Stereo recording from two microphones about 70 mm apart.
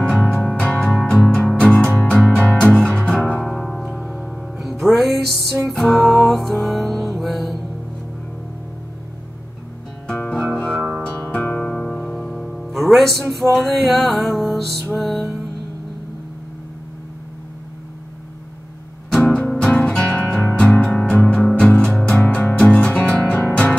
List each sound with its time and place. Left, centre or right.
0.2 s music: left
3.4 s music: centre
10.0 s music: left
10.8 s music: centre
11.2 s music: left
11.7 s music: centre
19.1 s music: centre